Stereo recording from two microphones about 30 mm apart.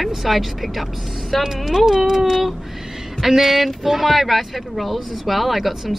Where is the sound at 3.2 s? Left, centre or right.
Centre.